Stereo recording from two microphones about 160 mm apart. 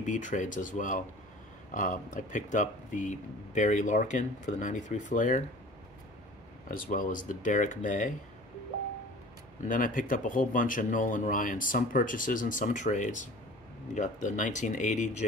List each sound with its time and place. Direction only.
0.0 s speech: 50° left (ahead or behind)
6.7 s speech: 60° left (ahead or behind)
9.7 s speech: 55° left (ahead or behind)